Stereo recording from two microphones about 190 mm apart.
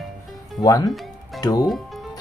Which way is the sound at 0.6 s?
20° left (ahead or behind).